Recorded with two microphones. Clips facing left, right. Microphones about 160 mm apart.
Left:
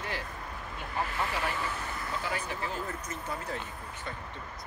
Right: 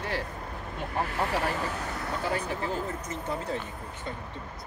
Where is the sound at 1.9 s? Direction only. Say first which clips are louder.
Right 4 dB; 70° right (ahead or behind).